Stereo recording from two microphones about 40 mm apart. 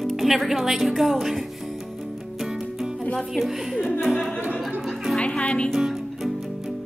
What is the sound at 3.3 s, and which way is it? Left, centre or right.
Speech, centre.